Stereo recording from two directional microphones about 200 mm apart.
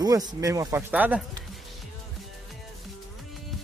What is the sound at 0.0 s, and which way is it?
Speech, 20° right (ahead or behind).